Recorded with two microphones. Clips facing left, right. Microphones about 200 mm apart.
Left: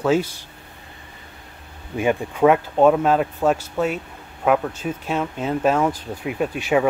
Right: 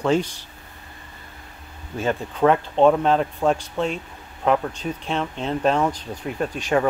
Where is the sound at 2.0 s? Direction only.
15° left (ahead or behind).